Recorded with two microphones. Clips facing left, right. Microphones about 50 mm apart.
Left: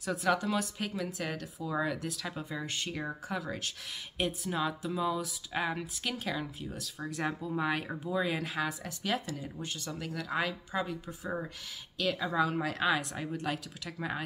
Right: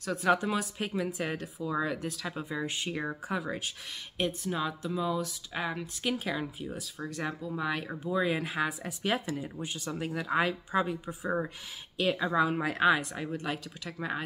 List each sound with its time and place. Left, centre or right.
0.0 s speech: centre
0.3 s speech: centre
1.6 s speech: centre
4.2 s speech: centre
7.0 s speech: centre
7.9 s speech: centre